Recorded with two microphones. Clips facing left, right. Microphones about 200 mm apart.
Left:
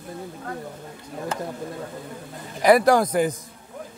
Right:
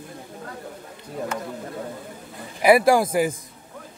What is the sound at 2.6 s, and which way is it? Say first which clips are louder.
Speech: even; 10° right (ahead or behind).